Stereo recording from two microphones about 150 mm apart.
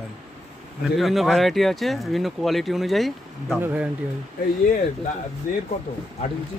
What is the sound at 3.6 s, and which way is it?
Speech, 10° right (ahead or behind).